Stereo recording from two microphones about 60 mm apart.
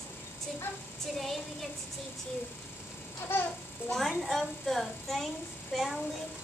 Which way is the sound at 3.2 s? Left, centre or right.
Left.